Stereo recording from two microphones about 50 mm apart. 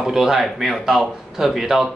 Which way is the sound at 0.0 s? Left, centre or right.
Centre.